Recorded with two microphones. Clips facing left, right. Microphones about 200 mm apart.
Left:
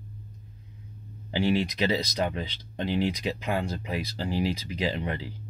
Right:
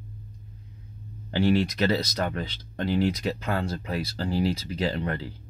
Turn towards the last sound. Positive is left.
turn(degrees=10)  # may be behind; listen again after turning